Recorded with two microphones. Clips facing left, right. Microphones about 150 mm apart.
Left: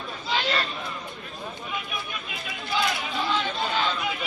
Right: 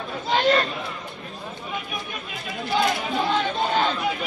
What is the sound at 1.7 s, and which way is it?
Chatter, 40° right (ahead or behind).